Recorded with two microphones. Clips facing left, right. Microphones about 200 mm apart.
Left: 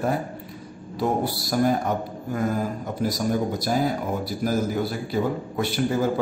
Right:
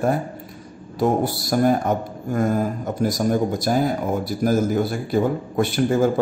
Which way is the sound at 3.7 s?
50° right (ahead or behind).